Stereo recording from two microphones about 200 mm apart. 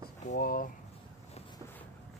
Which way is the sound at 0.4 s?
45° left (ahead or behind).